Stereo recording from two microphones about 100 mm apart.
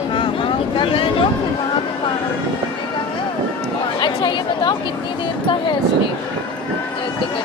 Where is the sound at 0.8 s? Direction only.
60° left (ahead or behind).